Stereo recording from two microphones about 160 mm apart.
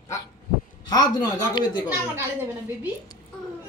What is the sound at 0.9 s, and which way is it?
Speech, 25° left (ahead or behind).